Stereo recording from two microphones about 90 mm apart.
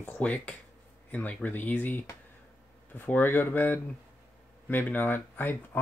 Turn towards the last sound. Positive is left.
turn(degrees=20)  # may be behind; listen again after turning